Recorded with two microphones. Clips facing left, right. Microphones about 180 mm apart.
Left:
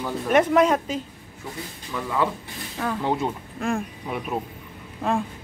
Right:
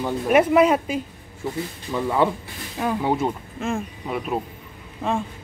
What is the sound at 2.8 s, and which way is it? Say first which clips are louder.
Speech: right 3 dB; 15° right (ahead or behind).